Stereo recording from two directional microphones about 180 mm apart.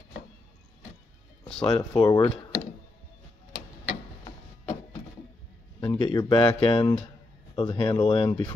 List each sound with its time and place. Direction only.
1.5 s speech: 5° left (ahead or behind)
2.0 s speech: 25° left (ahead or behind)
3.8 s a sound: 30° left (ahead or behind)
5.8 s speech: 25° left (ahead or behind)